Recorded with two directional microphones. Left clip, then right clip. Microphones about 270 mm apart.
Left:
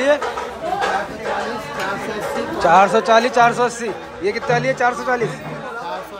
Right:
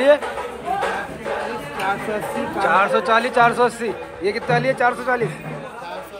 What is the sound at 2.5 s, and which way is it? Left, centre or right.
A man's voice, centre.